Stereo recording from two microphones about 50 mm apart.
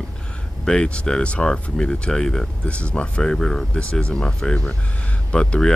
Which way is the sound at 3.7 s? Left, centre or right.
Left.